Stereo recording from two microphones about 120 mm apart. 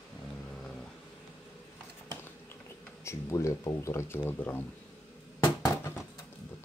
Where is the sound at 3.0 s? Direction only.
25° left (ahead or behind).